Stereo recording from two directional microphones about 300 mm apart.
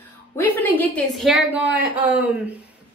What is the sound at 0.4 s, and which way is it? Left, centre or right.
A woman's voice, centre.